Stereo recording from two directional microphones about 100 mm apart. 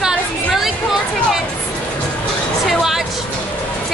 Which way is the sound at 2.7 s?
5° right (ahead or behind).